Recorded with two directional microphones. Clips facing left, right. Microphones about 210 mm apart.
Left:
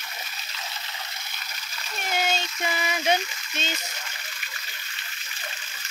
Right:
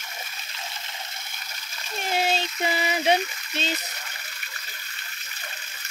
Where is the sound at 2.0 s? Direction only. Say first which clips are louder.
Right 2 dB; 30° right (ahead or behind).